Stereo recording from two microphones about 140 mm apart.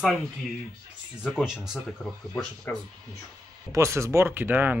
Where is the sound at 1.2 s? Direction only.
5° right (ahead or behind).